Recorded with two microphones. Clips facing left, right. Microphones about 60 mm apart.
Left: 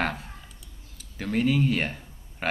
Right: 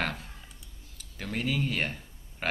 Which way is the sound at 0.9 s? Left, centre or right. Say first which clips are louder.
Left 7 dB; centre.